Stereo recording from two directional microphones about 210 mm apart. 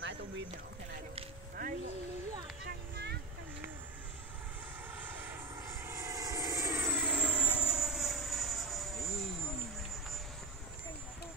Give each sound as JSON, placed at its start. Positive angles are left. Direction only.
{"t": 1.6, "sound": "speech", "side_deg": -40}
{"t": 2.6, "sound": "a sound", "side_deg": -55}
{"t": 4.9, "sound": "vehicle", "side_deg": -10}